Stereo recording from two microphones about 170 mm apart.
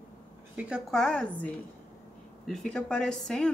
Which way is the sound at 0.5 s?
5° right (ahead or behind).